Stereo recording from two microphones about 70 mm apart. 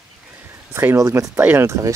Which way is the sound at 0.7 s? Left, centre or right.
Right.